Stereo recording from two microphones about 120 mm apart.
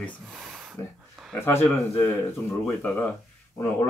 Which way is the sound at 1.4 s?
20° left (ahead or behind).